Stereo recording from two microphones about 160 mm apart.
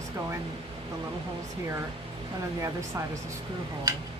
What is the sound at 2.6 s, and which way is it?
Speech, 20° right (ahead or behind).